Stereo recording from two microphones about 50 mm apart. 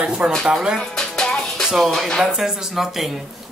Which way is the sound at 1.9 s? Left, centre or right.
Centre.